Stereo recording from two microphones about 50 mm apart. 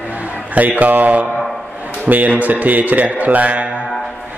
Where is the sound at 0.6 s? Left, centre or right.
Right.